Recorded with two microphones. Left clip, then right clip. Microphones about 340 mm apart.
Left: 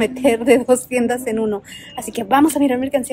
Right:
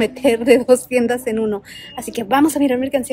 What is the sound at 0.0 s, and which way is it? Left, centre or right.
A woman's voice, centre.